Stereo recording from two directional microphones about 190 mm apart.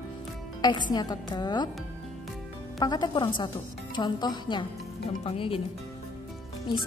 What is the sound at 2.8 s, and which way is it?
Speech, 20° left (ahead or behind).